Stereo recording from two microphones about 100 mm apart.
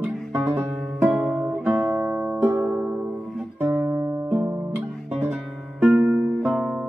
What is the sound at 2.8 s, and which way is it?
Music, 5° right (ahead or behind).